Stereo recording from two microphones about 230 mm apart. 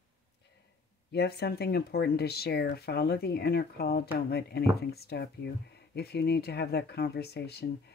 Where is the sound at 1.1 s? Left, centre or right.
Left.